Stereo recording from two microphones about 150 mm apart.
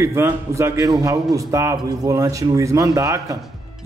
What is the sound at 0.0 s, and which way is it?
A man's voice, 20° right (ahead or behind).